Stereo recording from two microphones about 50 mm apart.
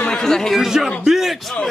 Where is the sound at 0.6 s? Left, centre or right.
Centre.